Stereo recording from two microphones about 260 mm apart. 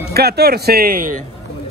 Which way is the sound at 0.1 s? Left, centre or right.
Right.